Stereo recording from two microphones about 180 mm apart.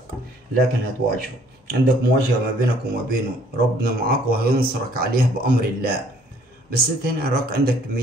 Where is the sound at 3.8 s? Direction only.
55° right (ahead or behind).